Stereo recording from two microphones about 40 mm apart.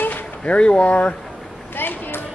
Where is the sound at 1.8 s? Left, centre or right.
Left.